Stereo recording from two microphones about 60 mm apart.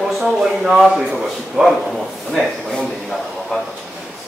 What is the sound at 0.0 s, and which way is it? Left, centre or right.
Speech, centre.